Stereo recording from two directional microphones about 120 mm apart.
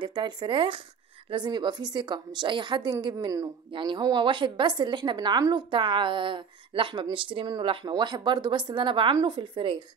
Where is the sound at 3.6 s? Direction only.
40° right (ahead or behind).